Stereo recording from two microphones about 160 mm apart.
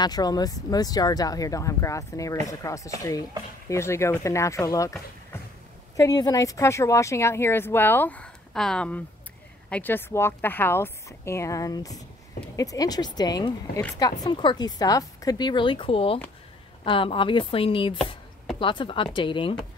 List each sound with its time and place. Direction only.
0.0 s speech: 25° left (ahead or behind)